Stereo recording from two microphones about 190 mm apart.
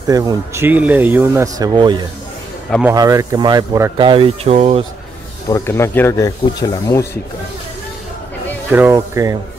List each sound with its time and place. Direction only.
0.1 s speech: 20° right (ahead or behind)
5.5 s speech: 15° left (ahead or behind)
8.6 s speech: 10° right (ahead or behind)